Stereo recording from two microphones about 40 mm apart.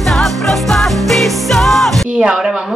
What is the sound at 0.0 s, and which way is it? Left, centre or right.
Music, centre.